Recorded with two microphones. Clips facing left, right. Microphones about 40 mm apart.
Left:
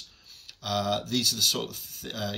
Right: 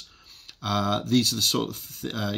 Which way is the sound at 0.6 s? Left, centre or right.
Right.